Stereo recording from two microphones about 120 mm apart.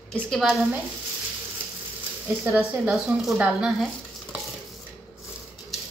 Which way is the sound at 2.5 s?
5° right (ahead or behind).